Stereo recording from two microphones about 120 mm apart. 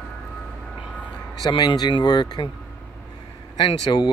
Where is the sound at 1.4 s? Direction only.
35° left (ahead or behind).